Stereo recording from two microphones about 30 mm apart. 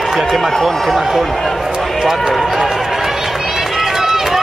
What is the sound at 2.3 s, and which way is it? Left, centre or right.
Run, centre.